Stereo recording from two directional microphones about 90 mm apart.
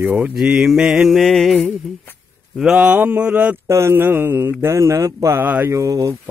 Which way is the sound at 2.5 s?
10° right (ahead or behind).